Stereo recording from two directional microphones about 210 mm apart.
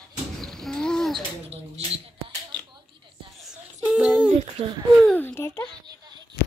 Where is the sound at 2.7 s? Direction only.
25° right (ahead or behind).